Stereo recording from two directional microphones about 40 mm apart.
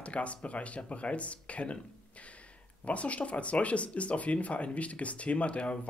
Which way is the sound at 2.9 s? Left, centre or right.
Left.